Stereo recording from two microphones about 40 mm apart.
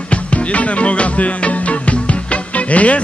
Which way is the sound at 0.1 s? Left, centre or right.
Left.